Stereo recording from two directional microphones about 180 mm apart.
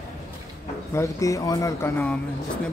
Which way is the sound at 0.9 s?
15° left (ahead or behind).